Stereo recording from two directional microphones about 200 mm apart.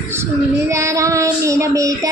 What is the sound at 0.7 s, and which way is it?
Child singing, 15° right (ahead or behind).